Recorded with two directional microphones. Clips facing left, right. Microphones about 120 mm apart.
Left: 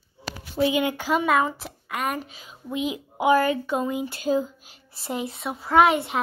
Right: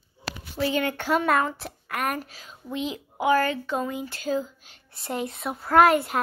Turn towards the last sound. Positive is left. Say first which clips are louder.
# even
turn(degrees=0)  # may be behind; listen again after turning